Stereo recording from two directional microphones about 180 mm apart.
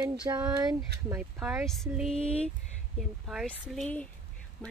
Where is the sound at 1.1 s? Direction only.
5° right (ahead or behind).